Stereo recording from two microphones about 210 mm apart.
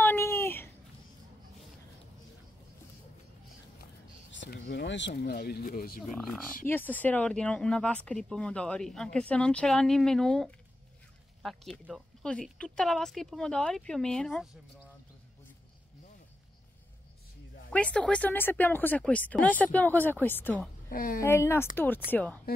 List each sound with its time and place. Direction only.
0.0 s a sound: 10° left (ahead or behind)
4.3 s speech: 60° left (ahead or behind)
6.1 s speech: 5° left (ahead or behind)
17.6 s speech: 5° left (ahead or behind)
20.9 s speech: 40° left (ahead or behind)
21.2 s speech: 10° left (ahead or behind)